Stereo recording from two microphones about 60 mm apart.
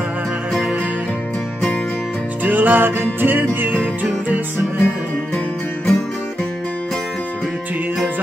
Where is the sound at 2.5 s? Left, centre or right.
Right.